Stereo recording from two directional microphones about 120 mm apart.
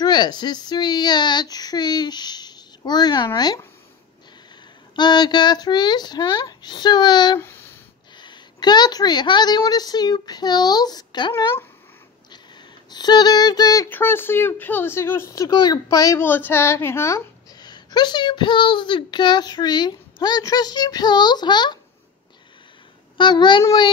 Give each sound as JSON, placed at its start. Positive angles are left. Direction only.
{"t": 0.0, "sound": "speech", "side_deg": 35}
{"t": 4.9, "sound": "speech", "side_deg": 35}
{"t": 7.3, "sound": "speech", "side_deg": 20}
{"t": 8.2, "sound": "speech", "side_deg": 40}
{"t": 12.9, "sound": "speech", "side_deg": 35}
{"t": 13.8, "sound": "speech", "side_deg": 15}
{"t": 16.3, "sound": "speech", "side_deg": 15}
{"t": 17.6, "sound": "speech", "side_deg": 35}
{"t": 23.1, "sound": "speech", "side_deg": 40}